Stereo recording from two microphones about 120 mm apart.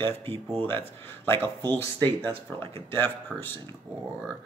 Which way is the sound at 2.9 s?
15° left (ahead or behind).